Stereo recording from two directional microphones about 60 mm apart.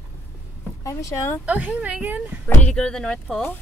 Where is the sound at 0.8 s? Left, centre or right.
Left.